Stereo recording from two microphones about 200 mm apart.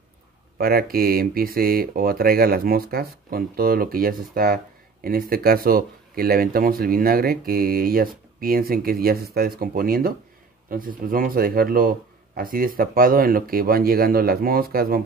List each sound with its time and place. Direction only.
0.6 s speech: 50° right (ahead or behind)